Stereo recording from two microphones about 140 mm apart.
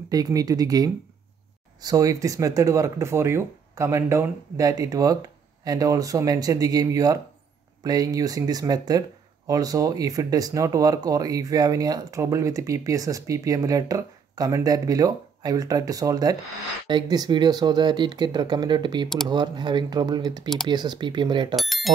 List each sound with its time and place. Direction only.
0.1 s speech: 25° right (ahead or behind)
21.5 s speech: centre (ahead or behind)